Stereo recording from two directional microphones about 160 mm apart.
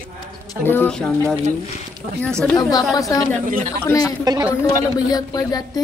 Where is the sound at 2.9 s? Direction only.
20° left (ahead or behind).